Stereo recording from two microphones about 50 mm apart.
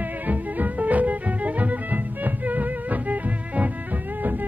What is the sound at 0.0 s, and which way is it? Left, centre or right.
Music, right.